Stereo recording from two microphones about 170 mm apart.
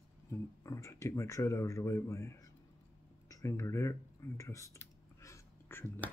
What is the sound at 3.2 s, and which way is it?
Computer keyboard, 20° left (ahead or behind).